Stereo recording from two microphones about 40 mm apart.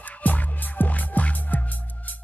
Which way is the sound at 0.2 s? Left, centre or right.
Left.